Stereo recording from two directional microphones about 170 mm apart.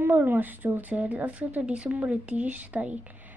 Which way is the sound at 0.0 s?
10° right (ahead or behind).